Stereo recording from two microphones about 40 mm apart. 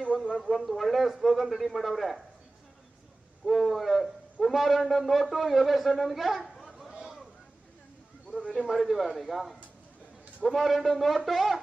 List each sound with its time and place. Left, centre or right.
0.3 s speech: centre
3.4 s a man's voice: centre
6.9 s a sound: centre
8.6 s speech: centre